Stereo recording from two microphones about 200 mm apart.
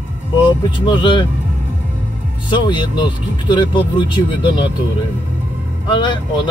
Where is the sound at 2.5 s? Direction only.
25° left (ahead or behind).